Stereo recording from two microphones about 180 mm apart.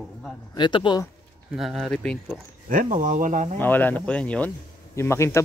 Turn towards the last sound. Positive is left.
turn(degrees=15)  # may be behind; listen again after turning